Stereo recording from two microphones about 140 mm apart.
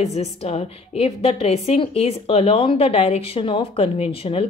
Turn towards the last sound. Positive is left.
turn(degrees=45)  # may be behind; listen again after turning